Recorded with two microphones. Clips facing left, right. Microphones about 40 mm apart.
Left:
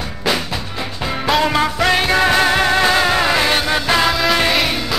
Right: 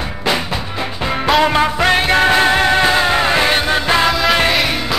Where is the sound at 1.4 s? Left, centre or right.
Right; by 4.1 s centre.